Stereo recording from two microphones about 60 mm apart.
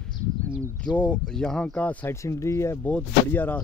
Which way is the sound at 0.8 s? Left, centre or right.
Centre.